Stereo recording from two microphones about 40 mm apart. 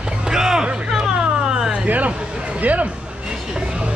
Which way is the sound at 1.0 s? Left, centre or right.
Right.